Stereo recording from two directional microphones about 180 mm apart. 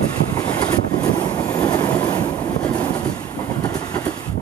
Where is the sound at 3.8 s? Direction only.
20° left (ahead or behind).